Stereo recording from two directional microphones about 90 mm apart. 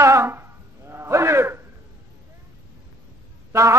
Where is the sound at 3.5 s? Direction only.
35° right (ahead or behind).